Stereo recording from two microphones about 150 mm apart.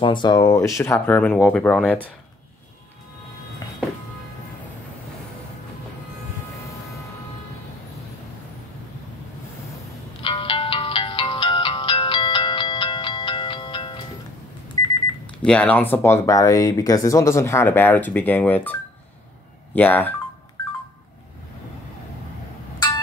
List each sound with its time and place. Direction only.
0.0 s speech: 30° left (ahead or behind); by 2.0 s 5° left (ahead or behind)
10.2 s music: 35° left (ahead or behind)
15.4 s speech: 5° left (ahead or behind)